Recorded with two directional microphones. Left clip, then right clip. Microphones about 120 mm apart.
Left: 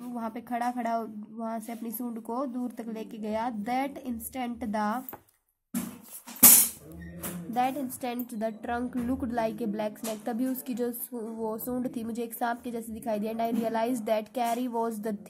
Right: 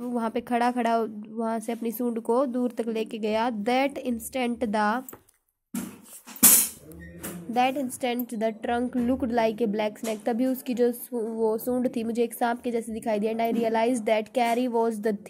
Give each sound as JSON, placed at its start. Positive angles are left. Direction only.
{"t": 0.0, "sound": "speech", "side_deg": -30}
{"t": 7.5, "sound": "a woman's voice", "side_deg": -20}